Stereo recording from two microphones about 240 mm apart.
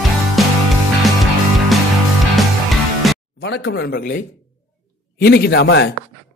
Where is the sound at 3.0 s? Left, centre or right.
Centre.